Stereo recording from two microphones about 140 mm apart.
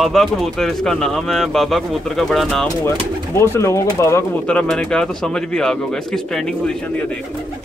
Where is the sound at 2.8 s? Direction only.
15° left (ahead or behind).